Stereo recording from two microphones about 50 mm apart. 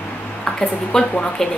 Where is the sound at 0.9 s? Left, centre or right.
Centre.